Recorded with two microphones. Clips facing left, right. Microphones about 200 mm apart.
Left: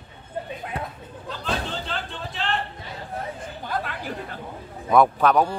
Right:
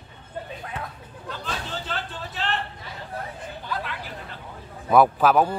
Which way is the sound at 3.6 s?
50° left (ahead or behind).